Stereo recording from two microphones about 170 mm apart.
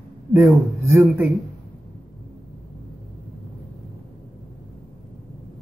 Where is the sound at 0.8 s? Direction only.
15° right (ahead or behind).